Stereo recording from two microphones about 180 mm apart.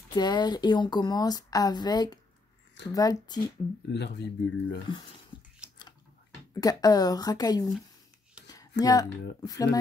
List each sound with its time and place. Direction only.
0.1 s speech: 25° left (ahead or behind)
3.9 s speech: 70° left (ahead or behind)
6.5 s speech: 20° left (ahead or behind)
8.8 s speech: 20° left (ahead or behind)